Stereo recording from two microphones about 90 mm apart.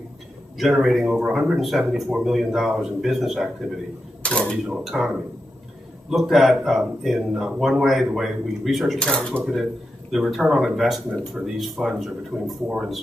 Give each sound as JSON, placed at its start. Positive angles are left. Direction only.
{"t": 0.6, "sound": "speech", "side_deg": -5}
{"t": 4.2, "sound": "speech", "side_deg": 10}
{"t": 4.8, "sound": "speech", "side_deg": 0}
{"t": 9.4, "sound": "speech", "side_deg": -5}
{"t": 12.6, "sound": "speech", "side_deg": -10}